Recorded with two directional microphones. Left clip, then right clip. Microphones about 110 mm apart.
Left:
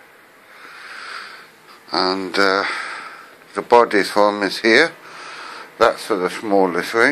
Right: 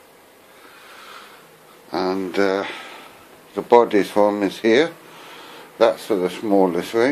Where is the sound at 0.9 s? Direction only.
10° right (ahead or behind).